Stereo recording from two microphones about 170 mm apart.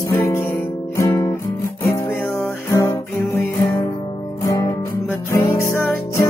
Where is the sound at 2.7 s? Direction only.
20° left (ahead or behind).